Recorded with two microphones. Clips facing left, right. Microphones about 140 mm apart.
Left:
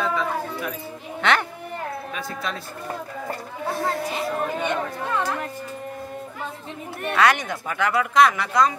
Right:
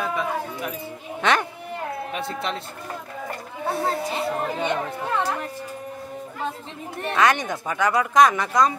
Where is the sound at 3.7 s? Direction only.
25° right (ahead or behind).